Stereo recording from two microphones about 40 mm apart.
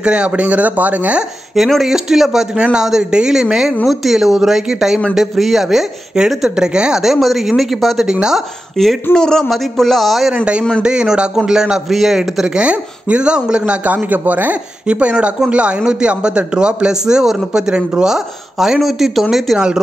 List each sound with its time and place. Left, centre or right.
0.0 s a man's voice: right
0.5 s speech: right
1.9 s speech: centre
2.5 s a man's voice: centre
3.8 s speech: centre
6.1 s a man's voice: centre
7.2 s speech: centre
8.1 s a man's voice: centre
8.8 s speech: centre
10.3 s a man's voice: right; by 12.2 s centre
12.5 s a man's voice: right
13.9 s speech: right
14.9 s a man's voice: right
15.8 s a man's voice: centre